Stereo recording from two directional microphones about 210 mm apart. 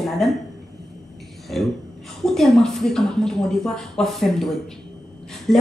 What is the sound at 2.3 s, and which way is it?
A woman's voice, centre (ahead or behind).